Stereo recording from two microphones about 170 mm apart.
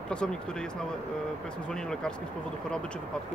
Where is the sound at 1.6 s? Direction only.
5° left (ahead or behind).